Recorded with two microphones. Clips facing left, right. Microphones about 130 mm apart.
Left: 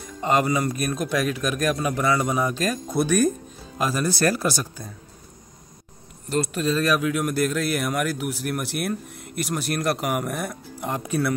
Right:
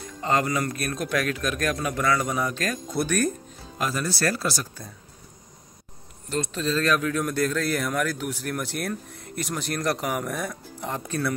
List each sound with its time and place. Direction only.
0.2 s speech: 15° left (ahead or behind)
6.3 s speech: 10° left (ahead or behind)